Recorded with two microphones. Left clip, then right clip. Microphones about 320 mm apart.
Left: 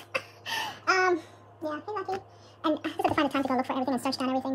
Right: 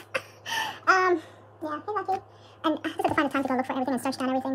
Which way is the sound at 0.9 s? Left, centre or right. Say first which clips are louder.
Right 2 dB; centre.